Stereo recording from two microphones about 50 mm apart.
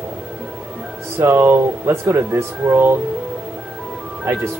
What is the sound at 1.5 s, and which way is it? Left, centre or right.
Speech, right.